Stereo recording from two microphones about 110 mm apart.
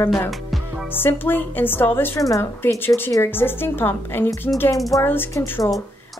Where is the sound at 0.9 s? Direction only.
20° left (ahead or behind).